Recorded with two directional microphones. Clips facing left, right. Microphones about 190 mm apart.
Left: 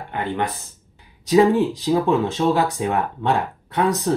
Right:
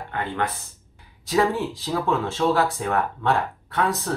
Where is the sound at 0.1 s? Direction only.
15° left (ahead or behind).